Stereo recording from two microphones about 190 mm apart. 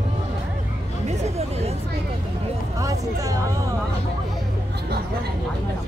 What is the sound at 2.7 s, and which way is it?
Music, 15° right (ahead or behind).